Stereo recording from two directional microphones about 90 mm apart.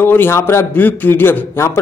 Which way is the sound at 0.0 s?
25° left (ahead or behind).